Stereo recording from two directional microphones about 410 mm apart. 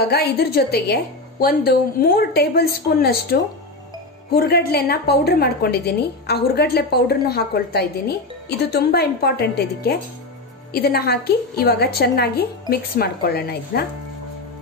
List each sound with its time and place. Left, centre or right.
0.0 s a woman's voice: left